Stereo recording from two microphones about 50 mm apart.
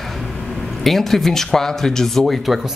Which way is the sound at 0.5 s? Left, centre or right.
Centre.